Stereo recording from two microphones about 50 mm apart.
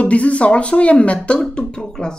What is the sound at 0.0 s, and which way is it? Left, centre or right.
Speech, left.